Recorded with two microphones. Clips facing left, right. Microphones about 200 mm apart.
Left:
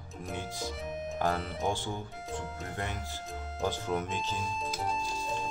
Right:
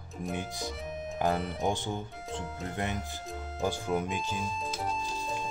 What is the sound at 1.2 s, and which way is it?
Speech, 20° right (ahead or behind).